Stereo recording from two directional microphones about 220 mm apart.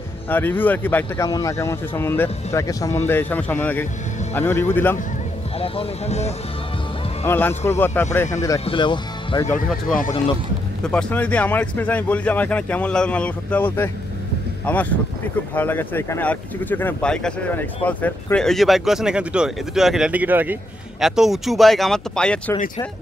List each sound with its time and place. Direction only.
0.3 s a man's voice: 10° left (ahead or behind)
5.6 s speech: 25° left (ahead or behind)
7.2 s a man's voice: 10° left (ahead or behind)
10.8 s a man's voice: 5° left (ahead or behind)